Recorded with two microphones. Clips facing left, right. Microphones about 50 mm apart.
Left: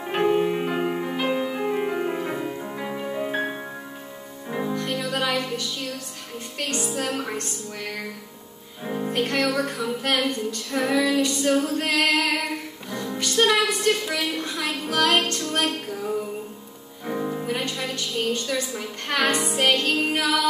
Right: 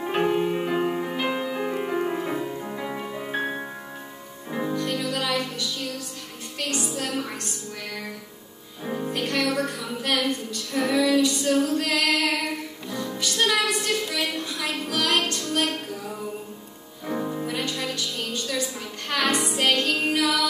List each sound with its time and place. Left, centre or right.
0.0 s music: centre
4.7 s music: left
7.0 s a woman's voice: left
8.8 s music: centre
9.1 s a woman's voice: left
9.6 s a sound: left
10.1 s a woman's voice: left
13.3 s a sound: left
15.2 s music: left
17.0 s music: centre
17.5 s music: left
17.7 s a woman's voice: left